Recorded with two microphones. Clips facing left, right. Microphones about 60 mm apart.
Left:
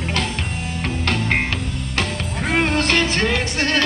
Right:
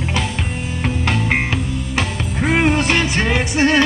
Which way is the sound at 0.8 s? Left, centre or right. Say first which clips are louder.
Right 2 dB; centre.